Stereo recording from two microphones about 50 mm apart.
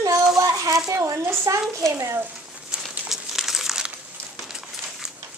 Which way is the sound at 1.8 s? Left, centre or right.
Right.